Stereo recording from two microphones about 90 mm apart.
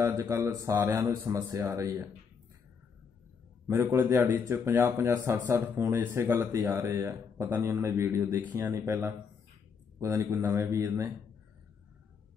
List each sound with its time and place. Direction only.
0.0 s speech: 40° right (ahead or behind)
3.6 s a man's voice: 35° right (ahead or behind); by 8.7 s 20° right (ahead or behind)
8.7 s a man's voice: 30° right (ahead or behind)